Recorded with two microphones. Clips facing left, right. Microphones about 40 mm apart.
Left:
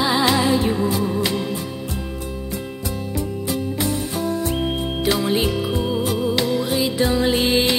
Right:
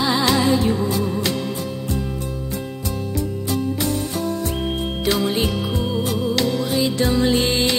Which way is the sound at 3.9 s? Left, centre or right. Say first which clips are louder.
Even; centre.